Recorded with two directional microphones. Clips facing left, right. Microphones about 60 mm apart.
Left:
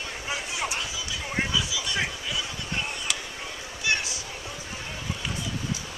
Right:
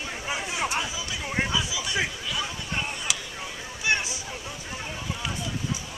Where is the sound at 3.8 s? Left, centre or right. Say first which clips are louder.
Right 2 dB; right.